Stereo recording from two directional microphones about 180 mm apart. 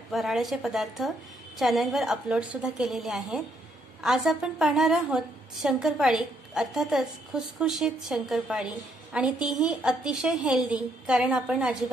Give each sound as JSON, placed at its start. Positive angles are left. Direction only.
{"t": 0.1, "sound": "a woman's voice", "side_deg": 0}